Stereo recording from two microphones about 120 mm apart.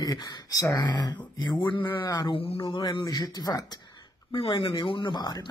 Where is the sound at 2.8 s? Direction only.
35° left (ahead or behind).